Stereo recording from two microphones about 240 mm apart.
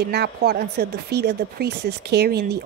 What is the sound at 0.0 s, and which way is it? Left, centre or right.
A woman's voice, right.